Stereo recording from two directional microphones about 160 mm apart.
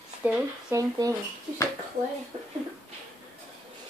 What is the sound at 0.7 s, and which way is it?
Speech, 20° right (ahead or behind).